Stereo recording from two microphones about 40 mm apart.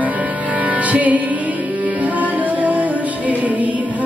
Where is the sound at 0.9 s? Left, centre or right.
Right.